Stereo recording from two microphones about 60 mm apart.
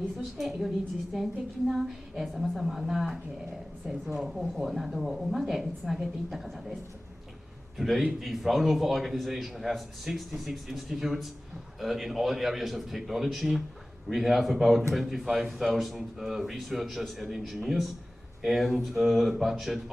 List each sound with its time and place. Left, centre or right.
0.4 s a man's voice: centre